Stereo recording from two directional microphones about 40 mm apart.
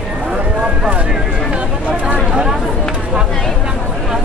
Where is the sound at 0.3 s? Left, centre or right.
Right.